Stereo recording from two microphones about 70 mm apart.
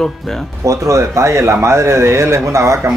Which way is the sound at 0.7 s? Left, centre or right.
Right.